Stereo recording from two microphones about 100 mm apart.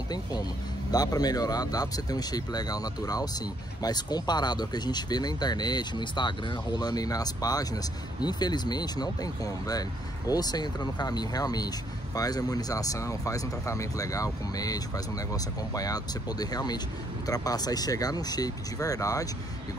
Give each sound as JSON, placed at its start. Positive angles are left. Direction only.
{"t": 0.9, "sound": "speech", "side_deg": 40}